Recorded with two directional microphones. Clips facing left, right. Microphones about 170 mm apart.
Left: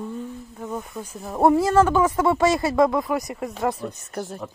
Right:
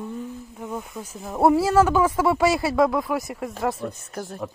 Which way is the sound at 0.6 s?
Centre (ahead or behind).